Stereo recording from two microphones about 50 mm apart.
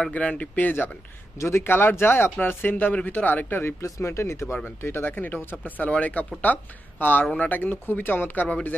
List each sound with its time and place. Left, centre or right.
0.1 s speech: left
1.4 s speech: left
1.7 s speech: left
2.7 s speech: left
3.1 s speech: left
3.8 s speech: left
4.6 s speech: left
5.1 s speech: left